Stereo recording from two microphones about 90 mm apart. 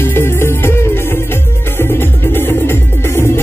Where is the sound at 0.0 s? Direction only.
25° left (ahead or behind).